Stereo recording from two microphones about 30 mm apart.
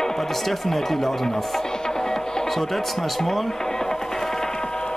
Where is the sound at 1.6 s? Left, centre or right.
Left.